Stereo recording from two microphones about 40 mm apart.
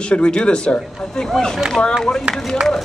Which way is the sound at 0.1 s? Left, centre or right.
Left.